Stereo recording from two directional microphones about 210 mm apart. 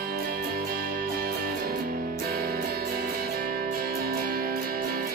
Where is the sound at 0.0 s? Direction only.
45° right (ahead or behind).